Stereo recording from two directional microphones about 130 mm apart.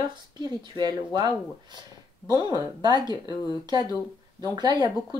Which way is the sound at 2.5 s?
35° right (ahead or behind).